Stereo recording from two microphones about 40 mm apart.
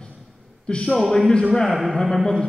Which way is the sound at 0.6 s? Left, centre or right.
Left.